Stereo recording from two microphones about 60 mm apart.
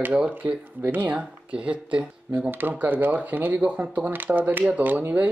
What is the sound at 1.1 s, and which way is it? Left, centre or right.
Speech, centre.